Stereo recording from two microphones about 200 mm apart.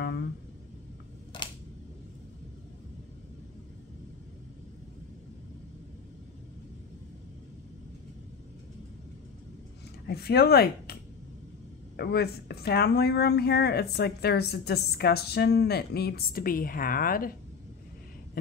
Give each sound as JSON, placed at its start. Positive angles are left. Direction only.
{"t": 10.0, "sound": "speech", "side_deg": 55}
{"t": 12.0, "sound": "speech", "side_deg": 55}